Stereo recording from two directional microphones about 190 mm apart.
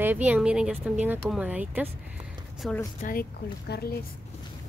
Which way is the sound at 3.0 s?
50° left (ahead or behind).